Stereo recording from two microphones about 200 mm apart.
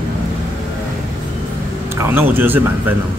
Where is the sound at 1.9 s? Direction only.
10° right (ahead or behind).